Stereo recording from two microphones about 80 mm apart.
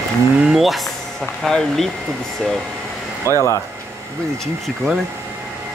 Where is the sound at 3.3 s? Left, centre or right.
Left.